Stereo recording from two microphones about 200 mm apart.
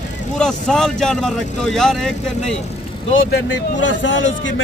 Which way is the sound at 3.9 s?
70° left (ahead or behind).